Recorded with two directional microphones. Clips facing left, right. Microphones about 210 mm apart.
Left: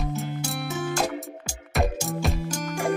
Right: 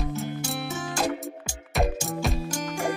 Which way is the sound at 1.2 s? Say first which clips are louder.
Right 2 dB; centre (ahead or behind).